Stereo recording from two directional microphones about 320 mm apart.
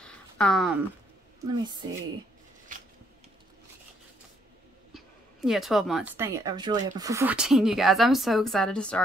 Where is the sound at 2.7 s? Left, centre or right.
Right.